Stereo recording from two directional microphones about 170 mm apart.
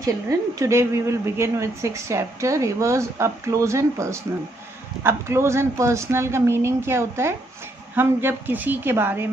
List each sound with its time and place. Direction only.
0.0 s a woman's voice: 20° right (ahead or behind)